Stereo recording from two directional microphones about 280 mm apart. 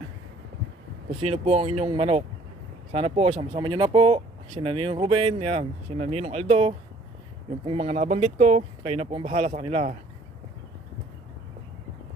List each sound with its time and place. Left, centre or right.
1.2 s speech: right